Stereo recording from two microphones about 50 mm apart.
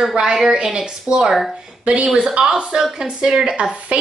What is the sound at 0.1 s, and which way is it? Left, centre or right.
Speech, centre.